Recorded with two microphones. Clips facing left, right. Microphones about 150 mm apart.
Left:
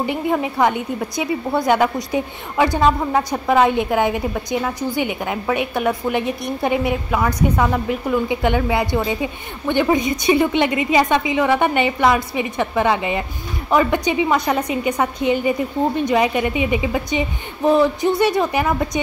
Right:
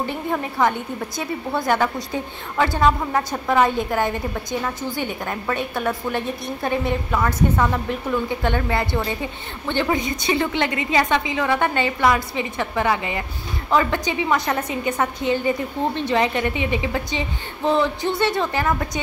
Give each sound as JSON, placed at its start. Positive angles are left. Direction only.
{"t": 0.0, "sound": "a woman's voice", "side_deg": 15}